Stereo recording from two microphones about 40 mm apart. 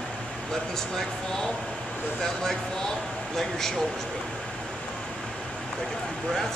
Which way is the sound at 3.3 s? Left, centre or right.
Centre.